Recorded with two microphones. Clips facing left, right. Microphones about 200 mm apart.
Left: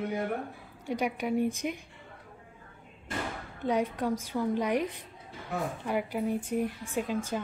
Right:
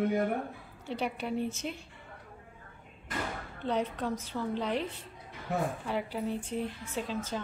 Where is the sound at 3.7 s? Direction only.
10° left (ahead or behind).